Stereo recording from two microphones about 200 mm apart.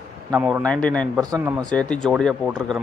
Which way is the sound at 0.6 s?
5° left (ahead or behind).